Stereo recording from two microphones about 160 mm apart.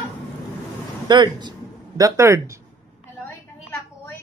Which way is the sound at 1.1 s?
30° right (ahead or behind).